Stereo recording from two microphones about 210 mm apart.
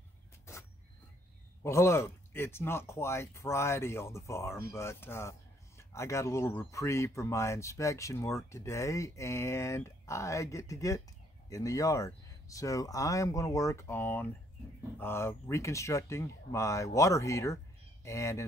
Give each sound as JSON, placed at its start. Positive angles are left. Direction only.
{"t": 1.6, "sound": "speech", "side_deg": 15}